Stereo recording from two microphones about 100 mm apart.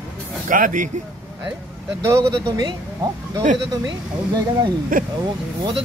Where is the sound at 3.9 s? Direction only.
50° right (ahead or behind).